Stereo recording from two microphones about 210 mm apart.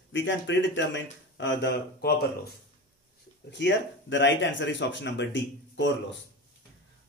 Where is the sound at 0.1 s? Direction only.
60° left (ahead or behind).